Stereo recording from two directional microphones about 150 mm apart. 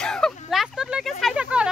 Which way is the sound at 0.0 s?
5° left (ahead or behind).